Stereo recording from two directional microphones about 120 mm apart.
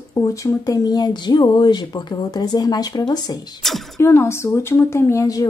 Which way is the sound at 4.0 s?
20° left (ahead or behind).